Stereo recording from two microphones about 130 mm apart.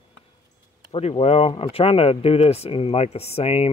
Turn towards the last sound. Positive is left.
turn(degrees=50)  # may be behind; listen again after turning